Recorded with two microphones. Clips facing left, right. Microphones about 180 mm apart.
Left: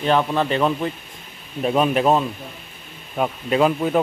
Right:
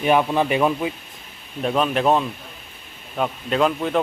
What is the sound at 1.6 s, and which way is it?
Speech, 5° left (ahead or behind).